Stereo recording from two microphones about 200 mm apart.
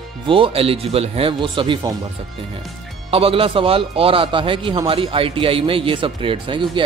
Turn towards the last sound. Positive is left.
turn(degrees=-25)  # may be behind; listen again after turning